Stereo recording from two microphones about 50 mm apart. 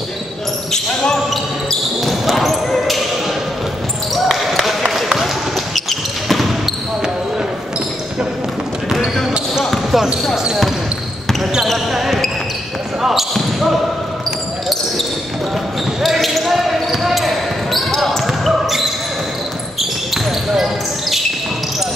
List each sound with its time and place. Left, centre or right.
0.7 s basketball bounce: centre
4.1 s basketball bounce: centre
8.8 s basketball bounce: centre
11.9 s basketball bounce: centre
13.0 s a sound: centre
16.0 s basketball bounce: centre
19.8 s basketball bounce: centre